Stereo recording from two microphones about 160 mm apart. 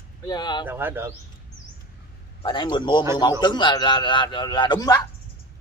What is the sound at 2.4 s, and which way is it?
A man's voice, 30° left (ahead or behind).